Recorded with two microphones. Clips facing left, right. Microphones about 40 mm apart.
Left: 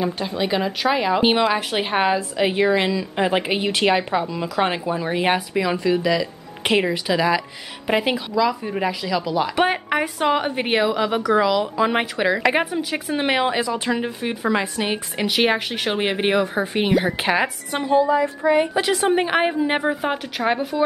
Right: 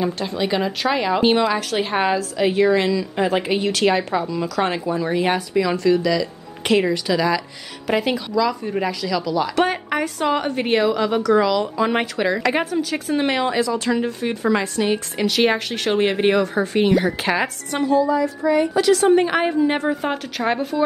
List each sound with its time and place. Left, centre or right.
0.0 s speech: centre
1.5 s speech: centre
17.8 s a sound: left
18.8 s speech: left